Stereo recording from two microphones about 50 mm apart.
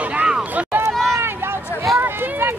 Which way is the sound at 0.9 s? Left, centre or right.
Right.